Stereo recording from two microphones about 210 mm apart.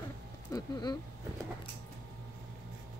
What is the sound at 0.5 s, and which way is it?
Speech, 20° left (ahead or behind).